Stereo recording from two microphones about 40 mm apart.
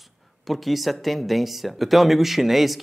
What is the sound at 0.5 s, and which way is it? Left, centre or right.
Speech, centre.